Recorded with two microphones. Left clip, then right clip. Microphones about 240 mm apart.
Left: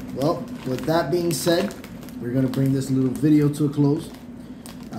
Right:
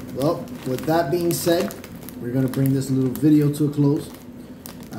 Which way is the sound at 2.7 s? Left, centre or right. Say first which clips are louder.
Even; centre.